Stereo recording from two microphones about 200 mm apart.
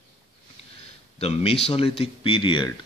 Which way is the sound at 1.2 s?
30° left (ahead or behind).